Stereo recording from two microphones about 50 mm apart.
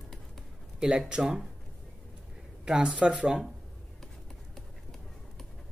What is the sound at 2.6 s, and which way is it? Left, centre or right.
Speech, centre.